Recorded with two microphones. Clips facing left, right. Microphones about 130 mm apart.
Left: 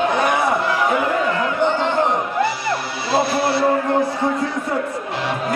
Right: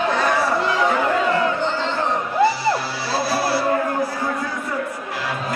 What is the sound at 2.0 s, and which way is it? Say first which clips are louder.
Music: even; 20° left (ahead or behind).